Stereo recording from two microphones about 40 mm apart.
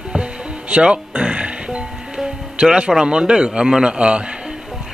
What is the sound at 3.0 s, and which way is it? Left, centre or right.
Speech, right.